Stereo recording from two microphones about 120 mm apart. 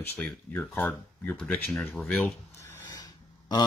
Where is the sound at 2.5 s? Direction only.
25° left (ahead or behind).